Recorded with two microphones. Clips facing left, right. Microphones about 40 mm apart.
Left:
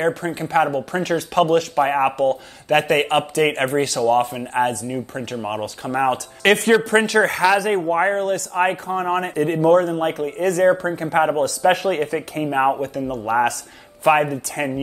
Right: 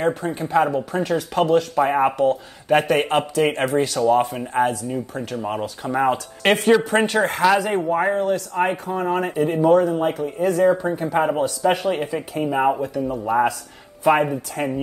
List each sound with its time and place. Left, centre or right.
0.0 s a man's voice: left
1.8 s speech: left
2.1 s speech: left
6.1 s a man's voice: left
7.9 s a man's voice: left
11.3 s speech: left
12.8 s a man's voice: left
14.0 s speech: left